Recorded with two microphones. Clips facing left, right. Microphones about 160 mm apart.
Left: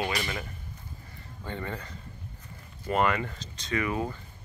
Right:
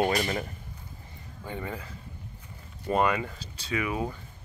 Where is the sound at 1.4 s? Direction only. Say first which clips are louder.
Even; 10° right (ahead or behind).